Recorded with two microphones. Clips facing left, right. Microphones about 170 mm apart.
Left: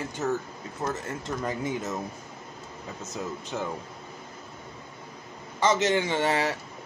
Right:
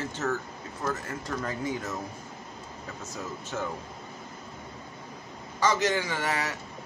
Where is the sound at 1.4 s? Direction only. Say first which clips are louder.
Left 2 dB; 15° left (ahead or behind).